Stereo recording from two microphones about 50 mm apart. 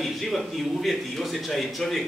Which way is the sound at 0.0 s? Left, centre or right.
Centre.